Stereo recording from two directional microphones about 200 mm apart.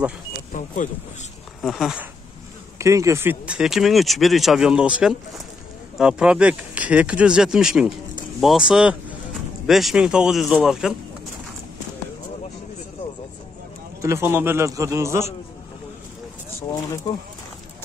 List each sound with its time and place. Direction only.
0.5 s speech: 40° left (ahead or behind)
1.6 s speech: centre (ahead or behind)
2.8 s speech: 15° right (ahead or behind)
14.0 s a man's voice: 10° right (ahead or behind)